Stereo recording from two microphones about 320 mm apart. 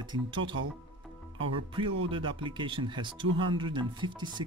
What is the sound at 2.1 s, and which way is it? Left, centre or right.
Speech, centre.